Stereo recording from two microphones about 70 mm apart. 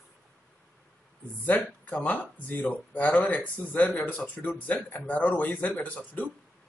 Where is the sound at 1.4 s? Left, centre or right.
Left.